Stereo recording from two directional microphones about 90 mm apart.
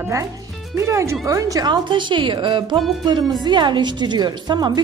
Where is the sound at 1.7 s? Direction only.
60° right (ahead or behind).